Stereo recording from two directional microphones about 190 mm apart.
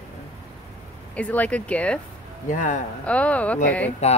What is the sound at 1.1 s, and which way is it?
Speech, 5° left (ahead or behind).